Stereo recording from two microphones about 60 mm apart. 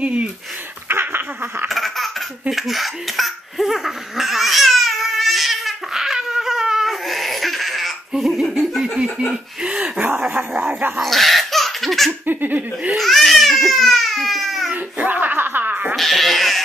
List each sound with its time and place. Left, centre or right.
0.0 s speech: centre
0.8 s a sound: right
1.7 s laughter: centre
9.3 s chuckle: centre
10.0 s a sound: right
11.0 s laughter: centre
12.1 s laughter: right
12.9 s baby cry: centre
14.7 s music: right
16.0 s cat: centre